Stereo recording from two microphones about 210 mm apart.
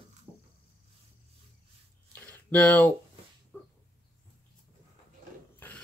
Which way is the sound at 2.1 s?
5° left (ahead or behind).